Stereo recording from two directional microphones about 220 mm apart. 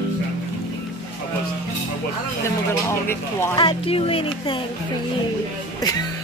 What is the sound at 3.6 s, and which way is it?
Speech, 25° left (ahead or behind).